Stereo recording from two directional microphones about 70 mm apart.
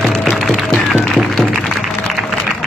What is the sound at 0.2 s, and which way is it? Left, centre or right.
Music, centre.